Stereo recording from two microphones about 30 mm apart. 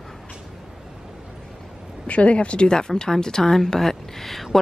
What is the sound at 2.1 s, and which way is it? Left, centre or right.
Speech, left.